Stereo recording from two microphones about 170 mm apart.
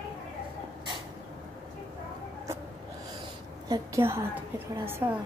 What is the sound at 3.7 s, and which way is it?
A woman's voice, 15° right (ahead or behind).